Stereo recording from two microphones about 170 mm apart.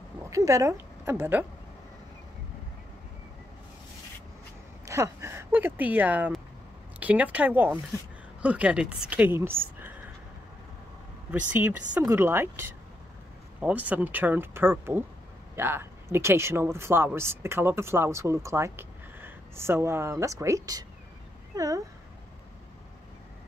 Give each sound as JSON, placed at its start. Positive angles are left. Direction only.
{"t": 0.3, "sound": "a woman's voice", "side_deg": -20}
{"t": 4.8, "sound": "speech", "side_deg": -15}
{"t": 11.2, "sound": "speech", "side_deg": -10}